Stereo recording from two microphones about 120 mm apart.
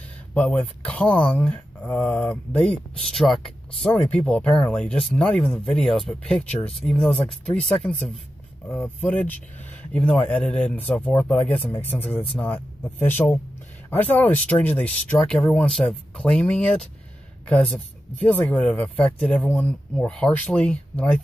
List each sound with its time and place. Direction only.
0.3 s speech: 10° left (ahead or behind)